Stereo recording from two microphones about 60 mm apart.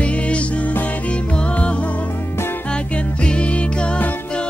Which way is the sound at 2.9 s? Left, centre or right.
Centre.